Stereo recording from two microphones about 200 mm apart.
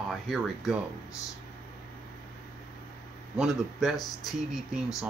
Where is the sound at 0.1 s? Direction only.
Centre (ahead or behind).